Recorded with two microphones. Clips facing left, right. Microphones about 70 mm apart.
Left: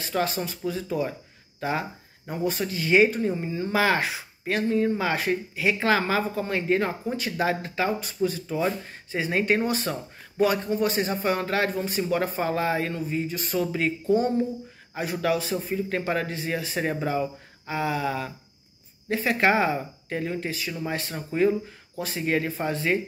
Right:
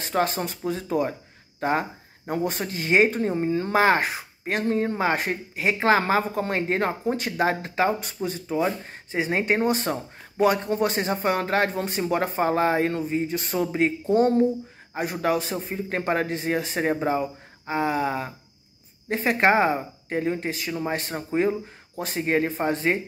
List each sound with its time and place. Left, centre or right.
0.0 s speech: right
1.6 s a sound: right
2.4 s speech: right
9.8 s speech: right
14.1 s speech: right
15.0 s speech: right